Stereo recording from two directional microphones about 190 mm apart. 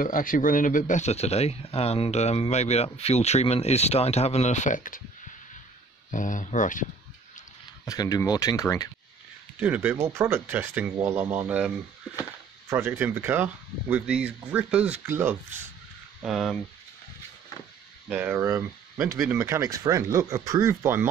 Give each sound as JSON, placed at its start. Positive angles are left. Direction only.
{"t": 0.0, "sound": "speech", "side_deg": 45}
{"t": 6.1, "sound": "speech", "side_deg": 40}
{"t": 7.8, "sound": "speech", "side_deg": 20}
{"t": 9.6, "sound": "speech", "side_deg": -10}
{"t": 16.3, "sound": "speech", "side_deg": 0}
{"t": 18.1, "sound": "speech", "side_deg": -10}